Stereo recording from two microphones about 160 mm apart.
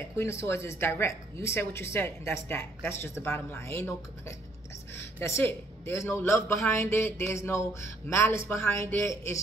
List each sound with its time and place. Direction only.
0.2 s a woman's voice: 15° left (ahead or behind)
4.9 s a woman's voice: 15° left (ahead or behind)